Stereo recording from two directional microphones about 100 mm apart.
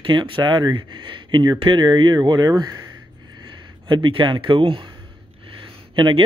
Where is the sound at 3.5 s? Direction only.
55° right (ahead or behind).